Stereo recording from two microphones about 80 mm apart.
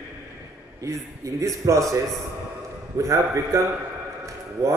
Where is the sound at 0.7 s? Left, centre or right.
Right.